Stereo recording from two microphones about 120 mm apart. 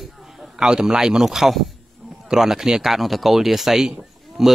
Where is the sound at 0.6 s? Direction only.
5° right (ahead or behind).